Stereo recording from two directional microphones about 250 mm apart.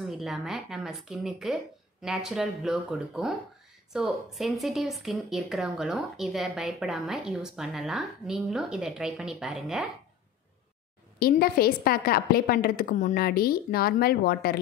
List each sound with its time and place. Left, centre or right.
0.2 s speech: centre
11.1 s a woman's voice: left